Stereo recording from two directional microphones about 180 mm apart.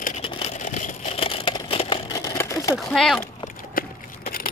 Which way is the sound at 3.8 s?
55° left (ahead or behind).